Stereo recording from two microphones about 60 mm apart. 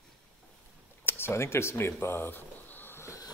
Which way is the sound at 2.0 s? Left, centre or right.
Left.